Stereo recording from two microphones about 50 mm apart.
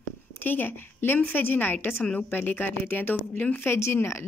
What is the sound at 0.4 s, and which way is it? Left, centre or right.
A woman's voice, left.